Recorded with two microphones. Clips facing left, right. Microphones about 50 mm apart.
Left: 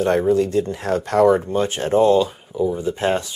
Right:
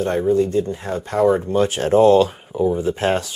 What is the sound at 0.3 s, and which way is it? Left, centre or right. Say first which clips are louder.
Speech: even; left.